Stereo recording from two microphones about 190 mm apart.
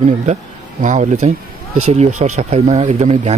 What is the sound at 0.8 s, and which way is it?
Speech, 40° right (ahead or behind).